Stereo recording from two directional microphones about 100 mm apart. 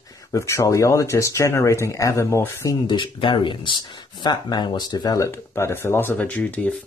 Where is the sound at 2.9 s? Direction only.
55° left (ahead or behind); by 5.3 s 40° left (ahead or behind).